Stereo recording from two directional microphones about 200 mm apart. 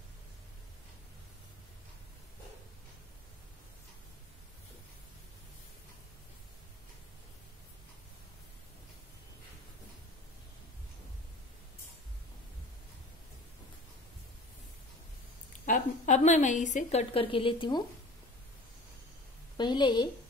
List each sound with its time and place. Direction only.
15.6 s a woman's voice: 40° left (ahead or behind); by 17.8 s 25° left (ahead or behind)
19.5 s a woman's voice: 20° left (ahead or behind)